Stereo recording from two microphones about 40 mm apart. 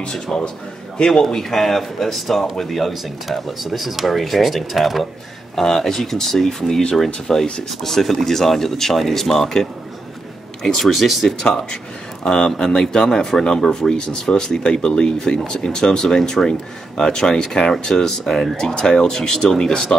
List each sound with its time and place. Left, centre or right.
0.0 s a man's voice: left
1.2 s speech: centre
11.2 s speech: centre